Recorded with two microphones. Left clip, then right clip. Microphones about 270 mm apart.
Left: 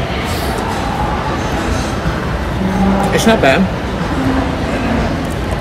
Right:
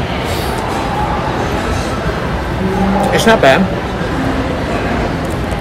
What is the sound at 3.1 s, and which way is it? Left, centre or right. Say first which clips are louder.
Speech: right 3 dB; centre.